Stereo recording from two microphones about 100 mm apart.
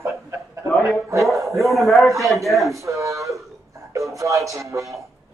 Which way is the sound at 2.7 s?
30° right (ahead or behind).